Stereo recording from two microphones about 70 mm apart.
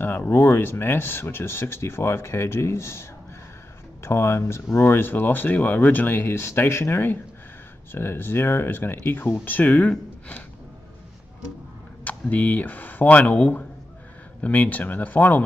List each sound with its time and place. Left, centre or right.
0.0 s speech: left
12.0 s speech: left